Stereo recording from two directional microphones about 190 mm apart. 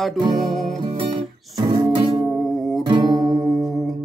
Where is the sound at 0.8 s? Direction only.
25° right (ahead or behind).